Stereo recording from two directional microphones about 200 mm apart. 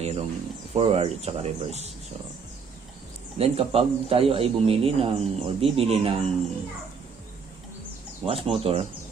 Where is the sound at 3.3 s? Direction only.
30° right (ahead or behind).